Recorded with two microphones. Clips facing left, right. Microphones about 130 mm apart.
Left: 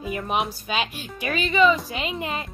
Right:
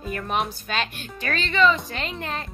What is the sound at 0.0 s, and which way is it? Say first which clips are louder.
Speech: left 1 dB; 5° left (ahead or behind).